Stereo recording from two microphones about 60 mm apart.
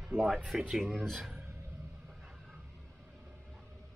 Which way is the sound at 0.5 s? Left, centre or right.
Centre.